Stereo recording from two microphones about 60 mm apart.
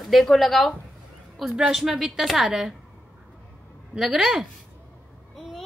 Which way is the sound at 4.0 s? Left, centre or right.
Centre.